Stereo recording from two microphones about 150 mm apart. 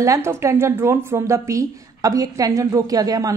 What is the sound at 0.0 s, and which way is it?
A woman's voice, 20° right (ahead or behind).